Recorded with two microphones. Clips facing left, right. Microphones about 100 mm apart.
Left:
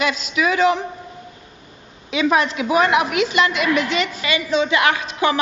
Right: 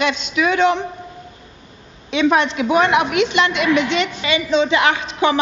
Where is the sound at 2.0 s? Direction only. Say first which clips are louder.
Right 2 dB; 5° left (ahead or behind).